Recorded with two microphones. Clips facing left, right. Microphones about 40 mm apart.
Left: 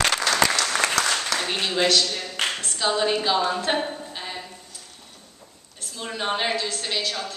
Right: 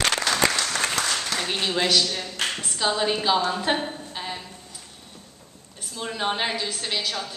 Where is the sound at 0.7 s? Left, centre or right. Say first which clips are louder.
Left 3 dB; left.